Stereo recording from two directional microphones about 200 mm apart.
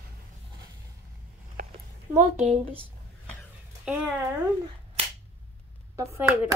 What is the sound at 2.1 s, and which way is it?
Speech, 30° right (ahead or behind).